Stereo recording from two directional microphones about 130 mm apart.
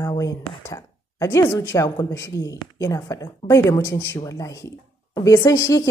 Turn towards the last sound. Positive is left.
turn(degrees=25)  # may be behind; listen again after turning